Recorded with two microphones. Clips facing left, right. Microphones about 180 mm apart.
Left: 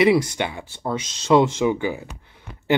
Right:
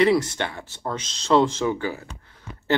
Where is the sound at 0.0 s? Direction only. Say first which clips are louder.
Left 2 dB; 10° left (ahead or behind).